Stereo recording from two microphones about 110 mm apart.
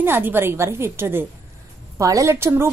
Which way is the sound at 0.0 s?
20° right (ahead or behind).